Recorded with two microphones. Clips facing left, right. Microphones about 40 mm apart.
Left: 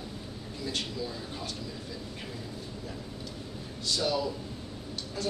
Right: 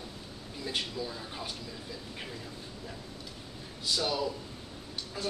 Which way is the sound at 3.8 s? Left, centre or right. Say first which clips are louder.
Left 1 dB; centre.